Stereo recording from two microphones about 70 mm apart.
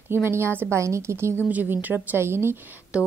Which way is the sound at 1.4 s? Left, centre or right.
Right.